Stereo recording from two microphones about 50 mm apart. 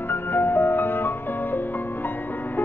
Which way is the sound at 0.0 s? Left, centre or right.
Left.